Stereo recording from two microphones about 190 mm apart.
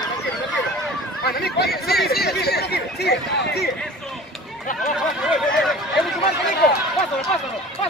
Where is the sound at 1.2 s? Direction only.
55° left (ahead or behind).